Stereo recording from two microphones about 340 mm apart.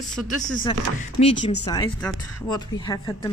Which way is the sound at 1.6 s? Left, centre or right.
Centre.